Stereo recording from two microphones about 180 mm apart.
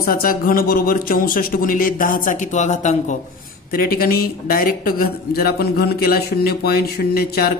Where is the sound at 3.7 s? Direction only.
55° left (ahead or behind).